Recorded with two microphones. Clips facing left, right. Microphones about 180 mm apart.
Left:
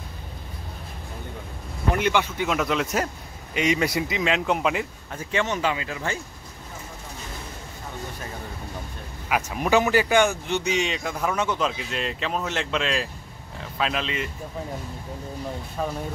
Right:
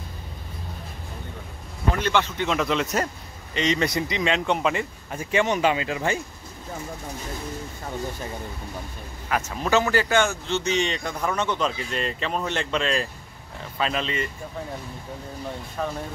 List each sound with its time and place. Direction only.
2.0 s speech: 10° left (ahead or behind)
5.1 s speech: 10° right (ahead or behind)
9.5 s speech: 15° left (ahead or behind)
15.8 s speech: 10° left (ahead or behind)